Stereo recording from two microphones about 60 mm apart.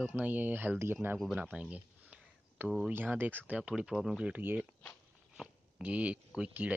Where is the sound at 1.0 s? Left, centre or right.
Right.